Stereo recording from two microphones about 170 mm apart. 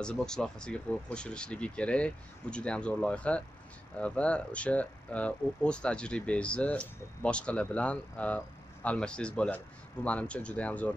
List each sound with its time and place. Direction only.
0.0 s speech: 5° left (ahead or behind)